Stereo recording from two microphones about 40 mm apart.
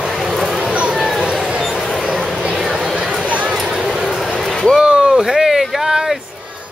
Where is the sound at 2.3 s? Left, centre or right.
Right.